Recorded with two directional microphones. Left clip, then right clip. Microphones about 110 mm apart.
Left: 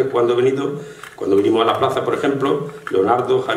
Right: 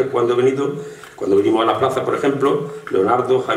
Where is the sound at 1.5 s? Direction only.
20° left (ahead or behind).